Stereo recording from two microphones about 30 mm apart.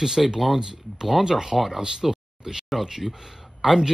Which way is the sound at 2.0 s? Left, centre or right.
Centre.